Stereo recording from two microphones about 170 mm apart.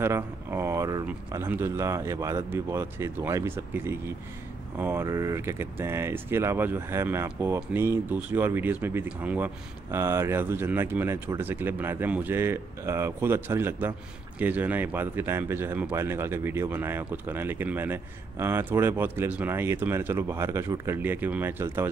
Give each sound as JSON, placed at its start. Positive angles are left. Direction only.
{"t": 0.0, "sound": "speech", "side_deg": -15}